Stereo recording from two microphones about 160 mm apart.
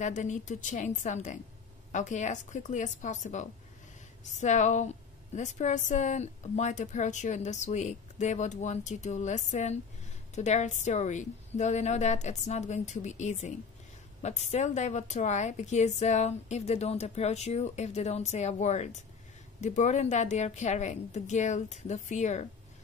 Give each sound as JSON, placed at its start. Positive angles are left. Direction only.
{"t": 0.0, "sound": "a woman's voice", "side_deg": 50}